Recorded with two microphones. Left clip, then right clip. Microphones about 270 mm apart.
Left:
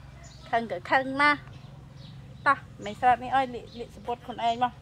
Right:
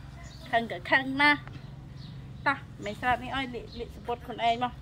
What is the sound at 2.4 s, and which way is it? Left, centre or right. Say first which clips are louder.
A woman's voice: left 4 dB; centre.